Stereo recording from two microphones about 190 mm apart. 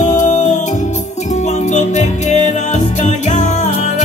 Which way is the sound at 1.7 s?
40° left (ahead or behind).